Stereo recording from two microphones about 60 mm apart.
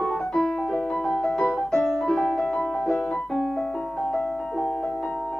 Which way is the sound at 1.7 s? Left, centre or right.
Centre.